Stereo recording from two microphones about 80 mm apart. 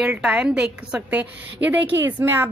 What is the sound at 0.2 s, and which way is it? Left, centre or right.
A woman's voice, centre.